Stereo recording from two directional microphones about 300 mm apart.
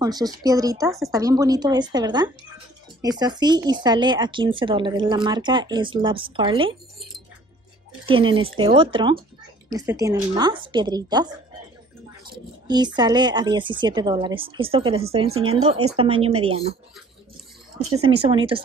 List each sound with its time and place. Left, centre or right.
0.0 s speech: centre
8.1 s speech: centre
12.6 s speech: centre
18.1 s speech: centre